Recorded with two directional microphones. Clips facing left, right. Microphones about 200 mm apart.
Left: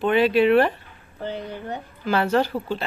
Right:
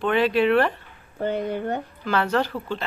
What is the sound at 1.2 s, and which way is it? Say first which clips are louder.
Speech: right 6 dB; 55° right (ahead or behind).